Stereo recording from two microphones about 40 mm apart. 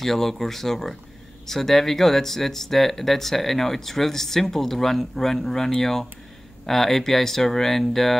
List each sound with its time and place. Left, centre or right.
0.0 s speech: centre